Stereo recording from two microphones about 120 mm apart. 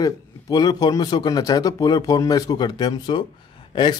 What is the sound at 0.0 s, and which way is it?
Speech, 30° left (ahead or behind).